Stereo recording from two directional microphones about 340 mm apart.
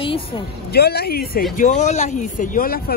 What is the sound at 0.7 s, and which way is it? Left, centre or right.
Speech, left.